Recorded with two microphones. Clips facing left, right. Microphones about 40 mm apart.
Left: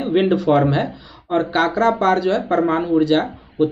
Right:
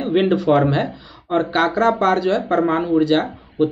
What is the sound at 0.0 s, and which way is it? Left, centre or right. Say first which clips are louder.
Speech: even; centre.